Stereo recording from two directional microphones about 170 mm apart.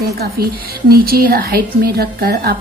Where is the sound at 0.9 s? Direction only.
60° right (ahead or behind).